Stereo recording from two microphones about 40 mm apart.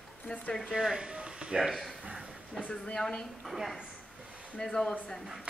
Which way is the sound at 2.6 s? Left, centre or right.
Left.